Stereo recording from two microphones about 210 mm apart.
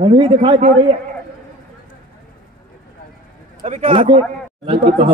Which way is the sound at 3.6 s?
30° right (ahead or behind).